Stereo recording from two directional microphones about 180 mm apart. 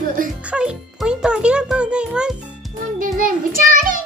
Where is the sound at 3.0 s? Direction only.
50° right (ahead or behind).